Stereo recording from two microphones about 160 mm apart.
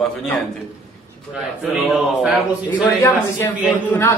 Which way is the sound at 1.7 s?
Centre (ahead or behind).